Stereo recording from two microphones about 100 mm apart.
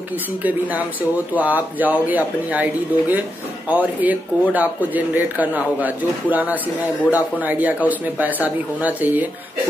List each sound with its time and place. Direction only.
1.3 s speech: 15° right (ahead or behind)